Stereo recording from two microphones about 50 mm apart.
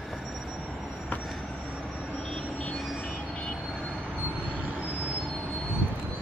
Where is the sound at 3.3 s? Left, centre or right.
Centre.